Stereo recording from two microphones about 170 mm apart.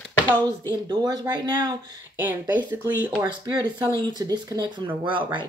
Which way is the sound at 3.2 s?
25° right (ahead or behind).